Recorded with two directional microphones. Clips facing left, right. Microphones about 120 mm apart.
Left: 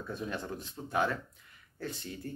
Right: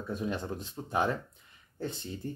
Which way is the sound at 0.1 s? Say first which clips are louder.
Right 4 dB; 20° right (ahead or behind).